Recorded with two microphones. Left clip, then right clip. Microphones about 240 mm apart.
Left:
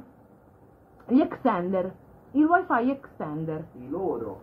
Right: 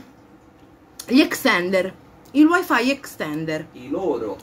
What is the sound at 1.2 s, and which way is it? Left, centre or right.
A woman's voice, centre.